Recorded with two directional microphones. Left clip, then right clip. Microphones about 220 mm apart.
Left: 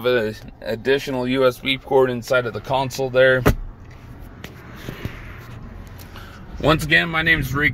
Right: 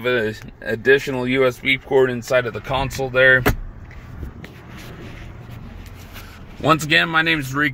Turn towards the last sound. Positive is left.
turn(degrees=0)  # may be behind; listen again after turning